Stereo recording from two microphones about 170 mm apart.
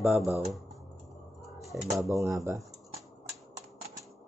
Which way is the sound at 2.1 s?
20° right (ahead or behind).